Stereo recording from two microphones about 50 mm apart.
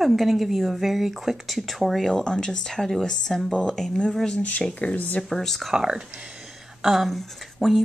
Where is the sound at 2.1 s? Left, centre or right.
Centre.